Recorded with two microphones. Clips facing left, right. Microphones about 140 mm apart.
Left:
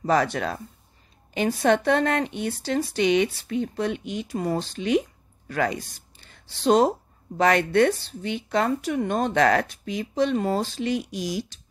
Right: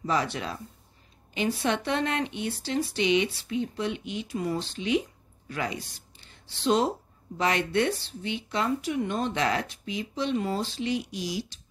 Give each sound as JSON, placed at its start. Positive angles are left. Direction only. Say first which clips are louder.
{"t": 0.0, "sound": "speech", "louder": "left 6 dB", "side_deg": 50}